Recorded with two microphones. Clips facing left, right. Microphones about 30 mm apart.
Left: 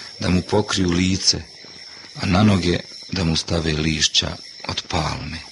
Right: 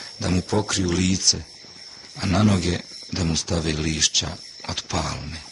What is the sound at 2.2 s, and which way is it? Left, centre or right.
Speech, centre.